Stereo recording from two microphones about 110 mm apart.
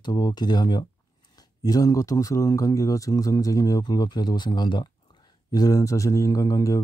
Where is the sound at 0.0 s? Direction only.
40° left (ahead or behind).